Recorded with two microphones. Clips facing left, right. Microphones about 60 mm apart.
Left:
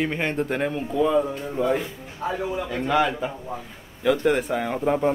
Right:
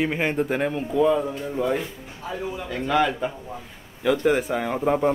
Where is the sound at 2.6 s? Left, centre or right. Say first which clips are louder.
Right 1 dB; centre.